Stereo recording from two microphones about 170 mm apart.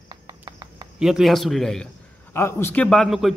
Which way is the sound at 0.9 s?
5° right (ahead or behind).